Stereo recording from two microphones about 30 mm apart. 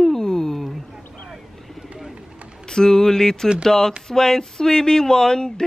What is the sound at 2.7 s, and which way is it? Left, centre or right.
Speech, centre.